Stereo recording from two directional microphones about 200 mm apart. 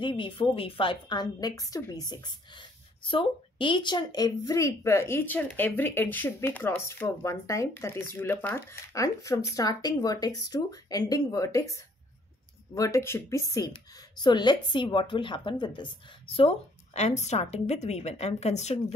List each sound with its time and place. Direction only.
0.0 s a woman's voice: 25° left (ahead or behind)